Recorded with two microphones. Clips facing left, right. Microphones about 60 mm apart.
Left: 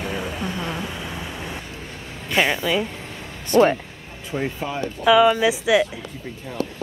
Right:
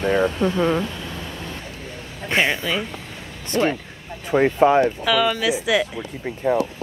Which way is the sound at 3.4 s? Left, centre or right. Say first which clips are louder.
Left 5 dB; left.